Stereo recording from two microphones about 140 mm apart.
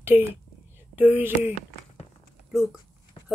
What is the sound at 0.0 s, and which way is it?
Speech, 15° right (ahead or behind).